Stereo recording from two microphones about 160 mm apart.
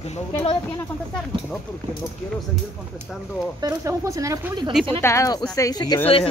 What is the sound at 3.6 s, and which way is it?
Speech, 20° right (ahead or behind).